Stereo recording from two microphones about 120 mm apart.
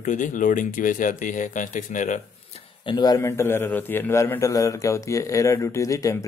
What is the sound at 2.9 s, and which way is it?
Speech, 30° left (ahead or behind).